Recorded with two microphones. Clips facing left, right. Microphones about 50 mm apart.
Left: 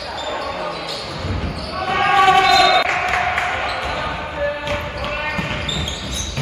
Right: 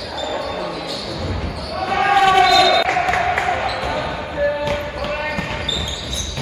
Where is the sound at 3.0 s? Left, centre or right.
Left.